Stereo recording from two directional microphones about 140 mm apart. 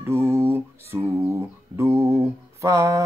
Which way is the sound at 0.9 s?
20° right (ahead or behind).